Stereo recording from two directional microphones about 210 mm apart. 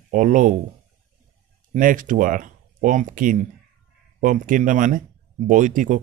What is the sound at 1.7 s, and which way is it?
Speech, 40° right (ahead or behind).